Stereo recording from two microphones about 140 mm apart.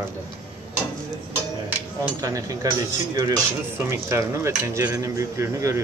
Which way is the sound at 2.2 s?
25° right (ahead or behind).